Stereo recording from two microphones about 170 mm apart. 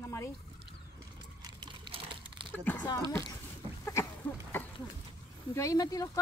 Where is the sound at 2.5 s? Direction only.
10° left (ahead or behind).